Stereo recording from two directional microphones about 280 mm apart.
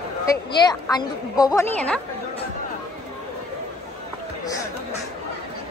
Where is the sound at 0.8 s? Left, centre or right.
Centre.